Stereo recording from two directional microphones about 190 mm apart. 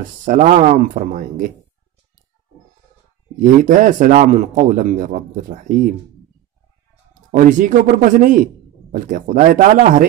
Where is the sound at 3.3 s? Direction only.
45° right (ahead or behind).